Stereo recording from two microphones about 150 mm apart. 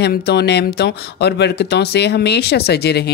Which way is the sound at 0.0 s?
90° left.